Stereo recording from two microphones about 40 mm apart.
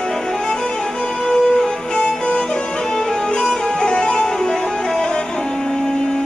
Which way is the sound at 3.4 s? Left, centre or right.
Centre.